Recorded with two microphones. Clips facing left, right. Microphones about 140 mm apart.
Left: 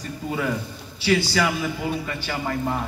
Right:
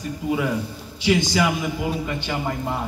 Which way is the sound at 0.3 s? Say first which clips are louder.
Right 3 dB; 10° right (ahead or behind).